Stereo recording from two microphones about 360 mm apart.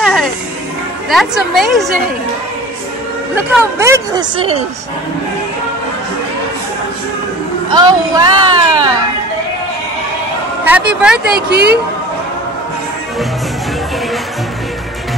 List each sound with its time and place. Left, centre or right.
0.0 s music: centre
1.1 s a woman's voice: centre
3.3 s speech: centre
7.7 s speech: centre
10.6 s a woman's voice: centre
11.3 s a woman's voice: right